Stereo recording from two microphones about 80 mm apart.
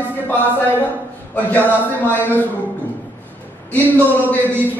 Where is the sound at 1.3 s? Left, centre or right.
Left.